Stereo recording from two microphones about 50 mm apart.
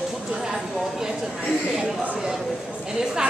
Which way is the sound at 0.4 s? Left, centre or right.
Centre.